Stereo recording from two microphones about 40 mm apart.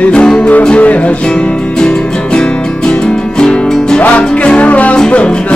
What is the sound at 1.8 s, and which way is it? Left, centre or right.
Music, centre.